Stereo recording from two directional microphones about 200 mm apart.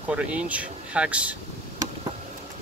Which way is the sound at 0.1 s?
5° right (ahead or behind).